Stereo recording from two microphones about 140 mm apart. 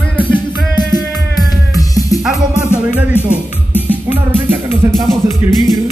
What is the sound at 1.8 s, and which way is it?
Music, 25° left (ahead or behind).